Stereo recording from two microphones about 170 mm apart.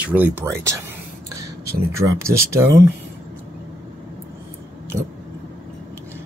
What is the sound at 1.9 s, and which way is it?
Speech, 15° right (ahead or behind).